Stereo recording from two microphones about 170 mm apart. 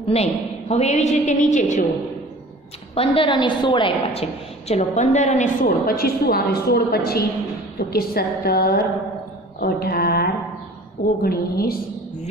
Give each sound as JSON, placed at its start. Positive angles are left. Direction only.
{"t": 0.0, "sound": "a woman's voice", "side_deg": 35}
{"t": 2.9, "sound": "a woman's voice", "side_deg": 35}
{"t": 9.6, "sound": "mantra", "side_deg": 65}
{"t": 11.2, "sound": "a woman's voice", "side_deg": 60}